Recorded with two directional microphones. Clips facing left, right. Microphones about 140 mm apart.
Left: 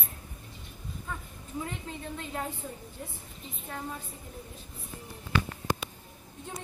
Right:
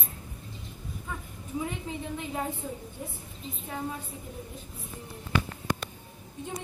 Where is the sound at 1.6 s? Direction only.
10° right (ahead or behind).